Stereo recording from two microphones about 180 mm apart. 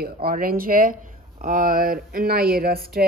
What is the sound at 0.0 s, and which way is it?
Speech, 55° right (ahead or behind).